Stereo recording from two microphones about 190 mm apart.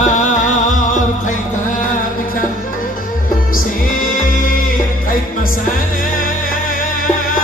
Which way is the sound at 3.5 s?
45° left (ahead or behind).